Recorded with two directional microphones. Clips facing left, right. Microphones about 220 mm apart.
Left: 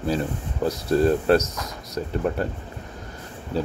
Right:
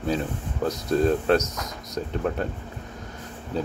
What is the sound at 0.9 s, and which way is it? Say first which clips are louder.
Speech: left 2 dB; 5° left (ahead or behind).